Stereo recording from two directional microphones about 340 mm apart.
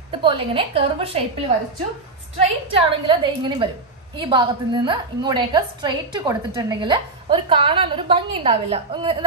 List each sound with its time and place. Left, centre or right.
0.1 s a woman's voice: centre
2.3 s a woman's voice: centre